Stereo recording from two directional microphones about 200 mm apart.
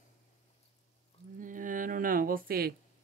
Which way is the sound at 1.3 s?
40° right (ahead or behind).